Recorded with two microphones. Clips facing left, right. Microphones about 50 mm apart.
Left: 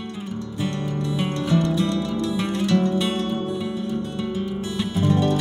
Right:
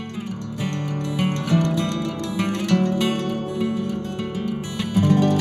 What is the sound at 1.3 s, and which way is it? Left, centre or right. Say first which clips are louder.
Music: right 1 dB; right.